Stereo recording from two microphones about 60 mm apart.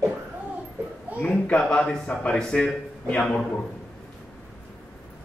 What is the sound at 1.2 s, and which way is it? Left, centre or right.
Speech, left.